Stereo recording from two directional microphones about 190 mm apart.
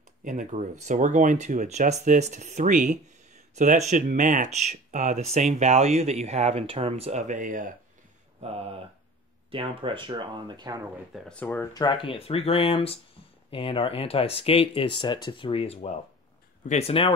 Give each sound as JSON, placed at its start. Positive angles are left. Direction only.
{"t": 0.2, "sound": "speech", "side_deg": -40}
{"t": 8.4, "sound": "speech", "side_deg": -30}
{"t": 11.2, "sound": "speech", "side_deg": 10}